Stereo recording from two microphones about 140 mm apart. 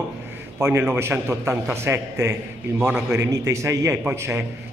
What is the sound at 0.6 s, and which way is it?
A man's voice, 15° right (ahead or behind).